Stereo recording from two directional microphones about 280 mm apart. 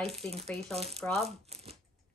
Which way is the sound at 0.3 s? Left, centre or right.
Right.